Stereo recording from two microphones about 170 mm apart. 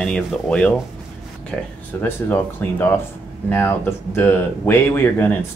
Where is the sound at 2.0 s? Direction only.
10° left (ahead or behind).